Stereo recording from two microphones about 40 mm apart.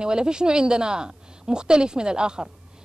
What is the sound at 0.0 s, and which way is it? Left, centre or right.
Speech, right.